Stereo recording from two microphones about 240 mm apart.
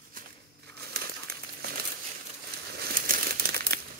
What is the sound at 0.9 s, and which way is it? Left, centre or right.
Crumpling, right.